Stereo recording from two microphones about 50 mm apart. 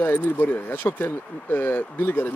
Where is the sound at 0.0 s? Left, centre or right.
Left.